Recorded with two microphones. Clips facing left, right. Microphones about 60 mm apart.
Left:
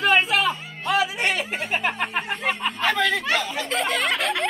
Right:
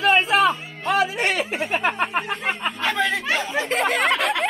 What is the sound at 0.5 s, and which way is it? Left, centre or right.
Music, right.